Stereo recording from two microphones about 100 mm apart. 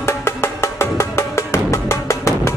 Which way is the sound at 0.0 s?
25° left (ahead or behind).